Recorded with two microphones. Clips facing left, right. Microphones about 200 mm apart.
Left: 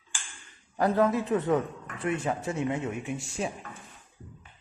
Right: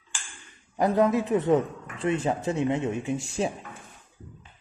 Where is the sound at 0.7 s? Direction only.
20° right (ahead or behind).